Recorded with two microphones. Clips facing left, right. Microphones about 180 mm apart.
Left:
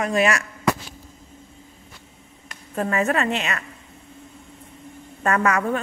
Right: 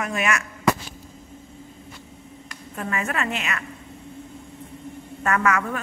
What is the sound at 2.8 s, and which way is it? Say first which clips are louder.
Speech: left 6 dB; 35° left (ahead or behind).